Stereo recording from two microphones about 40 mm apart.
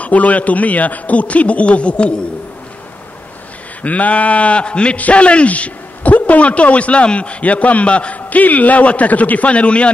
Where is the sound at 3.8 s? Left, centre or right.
Left.